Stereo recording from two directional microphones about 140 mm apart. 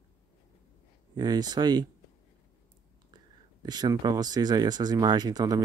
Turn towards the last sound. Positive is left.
turn(degrees=-30)  # may be behind; listen again after turning